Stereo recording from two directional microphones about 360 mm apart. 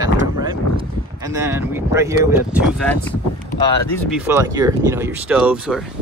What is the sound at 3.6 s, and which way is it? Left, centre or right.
Speech, centre.